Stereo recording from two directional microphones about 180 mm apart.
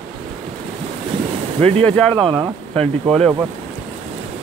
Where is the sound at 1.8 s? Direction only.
5° left (ahead or behind).